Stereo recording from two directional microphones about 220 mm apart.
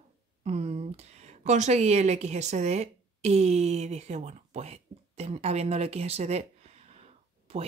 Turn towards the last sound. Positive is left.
turn(degrees=-30)  # may be behind; listen again after turning